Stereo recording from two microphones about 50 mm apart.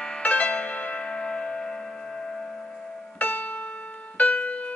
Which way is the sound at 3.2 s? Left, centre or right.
Left.